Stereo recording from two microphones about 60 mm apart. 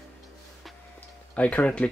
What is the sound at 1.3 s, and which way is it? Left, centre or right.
Speech, left.